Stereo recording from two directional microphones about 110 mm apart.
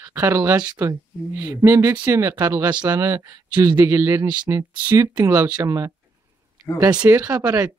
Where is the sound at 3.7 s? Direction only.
25° right (ahead or behind).